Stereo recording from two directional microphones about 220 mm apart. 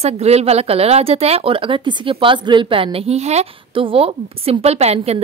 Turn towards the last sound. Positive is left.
turn(degrees=-30)  # may be behind; listen again after turning